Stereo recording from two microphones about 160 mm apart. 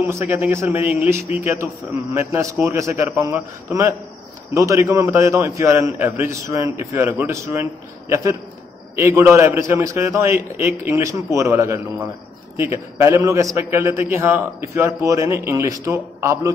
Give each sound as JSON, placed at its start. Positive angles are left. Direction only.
{"t": 0.1, "sound": "a man's voice", "side_deg": -15}